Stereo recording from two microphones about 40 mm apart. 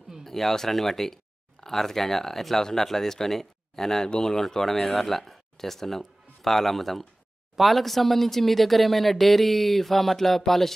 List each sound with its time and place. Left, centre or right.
0.2 s speech: centre